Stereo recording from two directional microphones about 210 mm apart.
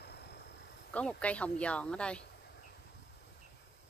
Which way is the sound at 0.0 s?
50° left (ahead or behind).